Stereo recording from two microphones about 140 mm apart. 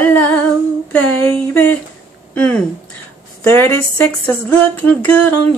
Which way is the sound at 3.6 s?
10° left (ahead or behind).